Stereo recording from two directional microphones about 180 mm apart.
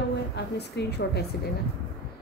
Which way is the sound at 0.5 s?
65° left (ahead or behind).